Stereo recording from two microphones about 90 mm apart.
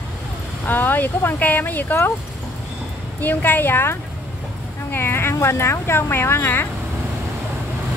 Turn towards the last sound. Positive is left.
turn(degrees=25)  # may be behind; listen again after turning